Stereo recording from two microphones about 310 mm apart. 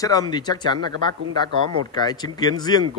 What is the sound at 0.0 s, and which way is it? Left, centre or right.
A man's voice, centre.